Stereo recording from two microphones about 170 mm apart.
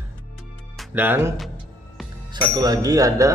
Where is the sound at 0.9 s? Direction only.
10° right (ahead or behind).